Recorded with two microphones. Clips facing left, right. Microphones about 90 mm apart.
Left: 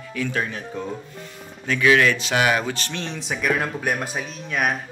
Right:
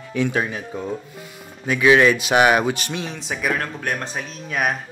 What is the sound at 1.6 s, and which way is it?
Speech, 15° right (ahead or behind).